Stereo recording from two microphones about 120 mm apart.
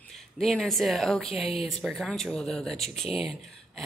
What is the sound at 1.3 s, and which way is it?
Speech, 55° left (ahead or behind).